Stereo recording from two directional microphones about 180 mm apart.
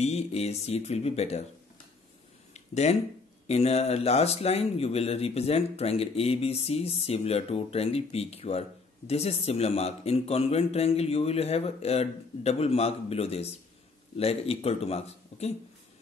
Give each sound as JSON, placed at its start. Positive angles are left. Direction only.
{"t": 0.0, "sound": "speech", "side_deg": 35}
{"t": 2.5, "sound": "a sound", "side_deg": 40}
{"t": 3.4, "sound": "speech", "side_deg": 35}